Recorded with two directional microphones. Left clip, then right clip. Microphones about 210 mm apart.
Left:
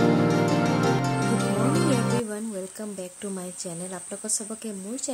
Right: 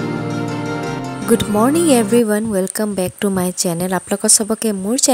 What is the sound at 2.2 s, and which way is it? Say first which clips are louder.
A woman's voice: right 15 dB; 45° right (ahead or behind).